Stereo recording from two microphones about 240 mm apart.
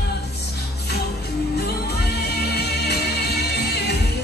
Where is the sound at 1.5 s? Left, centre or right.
Left.